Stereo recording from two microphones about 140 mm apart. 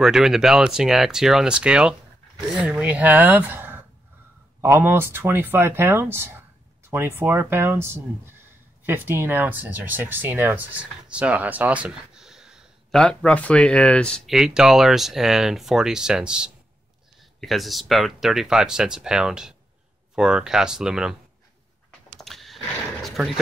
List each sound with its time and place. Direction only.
0.0 s speech: 5° right (ahead or behind)
13.0 s speech: 10° left (ahead or behind)
22.2 s a sound: centre (ahead or behind)
23.0 s speech: centre (ahead or behind)